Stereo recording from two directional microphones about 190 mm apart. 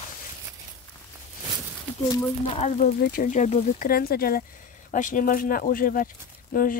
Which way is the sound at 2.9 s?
45° left (ahead or behind).